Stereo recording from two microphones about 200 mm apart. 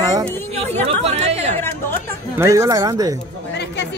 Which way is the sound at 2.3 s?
15° right (ahead or behind).